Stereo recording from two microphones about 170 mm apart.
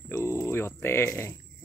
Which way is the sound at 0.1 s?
15° left (ahead or behind).